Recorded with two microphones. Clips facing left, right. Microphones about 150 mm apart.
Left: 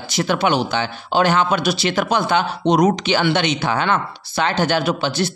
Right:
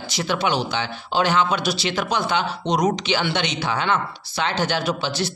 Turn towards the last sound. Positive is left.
turn(degrees=55)  # may be behind; listen again after turning